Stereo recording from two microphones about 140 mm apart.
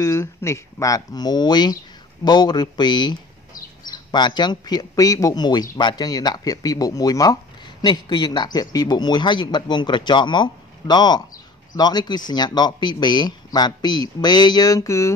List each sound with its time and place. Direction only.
0.0 s a man's voice: 20° left (ahead or behind)